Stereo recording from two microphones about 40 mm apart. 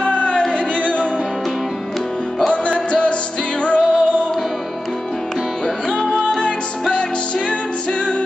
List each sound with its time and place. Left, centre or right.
0.0 s music: left
2.5 s music: left
5.9 s music: left